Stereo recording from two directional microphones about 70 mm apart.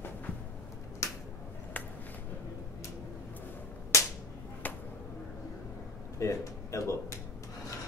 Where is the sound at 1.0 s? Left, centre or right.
Left.